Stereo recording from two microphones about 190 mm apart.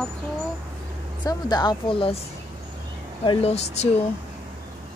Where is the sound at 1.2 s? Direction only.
25° left (ahead or behind).